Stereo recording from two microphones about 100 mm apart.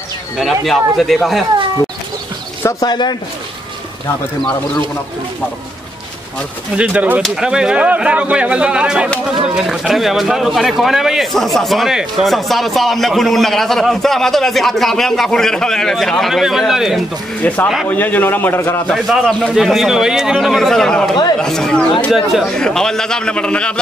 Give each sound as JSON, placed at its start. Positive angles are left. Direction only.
{"t": 0.4, "sound": "speech", "side_deg": 0}
{"t": 2.8, "sound": "speech", "side_deg": 45}
{"t": 6.8, "sound": "speech", "side_deg": -15}
{"t": 7.2, "sound": "speech", "side_deg": -5}
{"t": 17.4, "sound": "a man's voice", "side_deg": 15}
{"t": 18.9, "sound": "a man's voice", "side_deg": 5}